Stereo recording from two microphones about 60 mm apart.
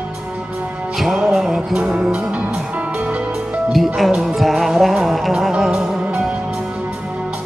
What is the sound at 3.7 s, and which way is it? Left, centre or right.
Music, centre.